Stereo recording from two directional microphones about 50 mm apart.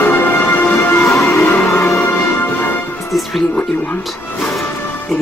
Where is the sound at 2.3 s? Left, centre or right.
Left.